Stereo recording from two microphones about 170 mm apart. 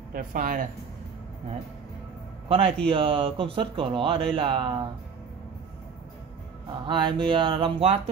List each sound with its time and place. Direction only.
0.1 s speech: 55° right (ahead or behind)
2.4 s a man's voice: 35° right (ahead or behind)
6.9 s speech: 30° right (ahead or behind)